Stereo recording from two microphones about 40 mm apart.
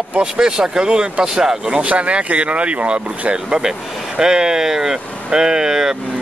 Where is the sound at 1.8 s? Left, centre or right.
Right.